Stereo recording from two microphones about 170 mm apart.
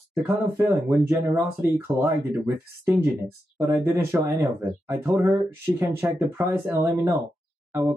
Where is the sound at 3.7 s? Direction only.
15° right (ahead or behind).